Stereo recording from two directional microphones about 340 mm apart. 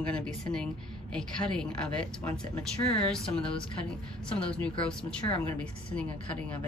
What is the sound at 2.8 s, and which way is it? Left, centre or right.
Speech, centre.